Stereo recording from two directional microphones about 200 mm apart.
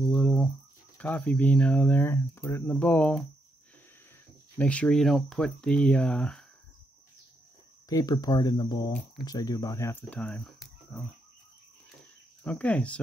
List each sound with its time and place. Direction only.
0.0 s a sound: 5° left (ahead or behind)
0.9 s speech: 5° left (ahead or behind)
4.6 s speech: 5° left (ahead or behind)
7.9 s speech: 20° left (ahead or behind); by 11.0 s 5° left (ahead or behind)
12.4 s speech: 5° left (ahead or behind)